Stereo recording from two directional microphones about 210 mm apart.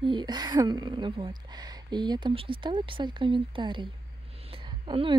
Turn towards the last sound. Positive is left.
turn(degrees=-20)  # may be behind; listen again after turning